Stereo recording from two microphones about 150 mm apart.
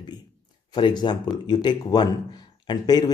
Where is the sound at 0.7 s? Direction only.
30° left (ahead or behind).